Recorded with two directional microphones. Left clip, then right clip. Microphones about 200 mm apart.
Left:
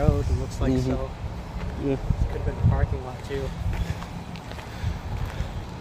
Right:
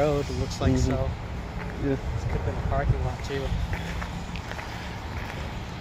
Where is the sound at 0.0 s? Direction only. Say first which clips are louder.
Right 3 dB; 40° right (ahead or behind).